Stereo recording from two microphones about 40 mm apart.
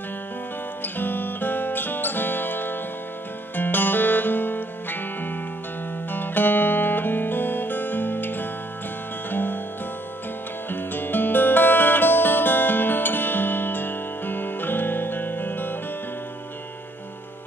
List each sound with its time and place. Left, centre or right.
0.8 s music: left
6.1 s guitar: left
9.3 s music: left
10.7 s music: left